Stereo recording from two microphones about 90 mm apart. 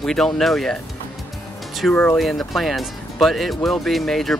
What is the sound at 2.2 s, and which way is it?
Speech, centre (ahead or behind).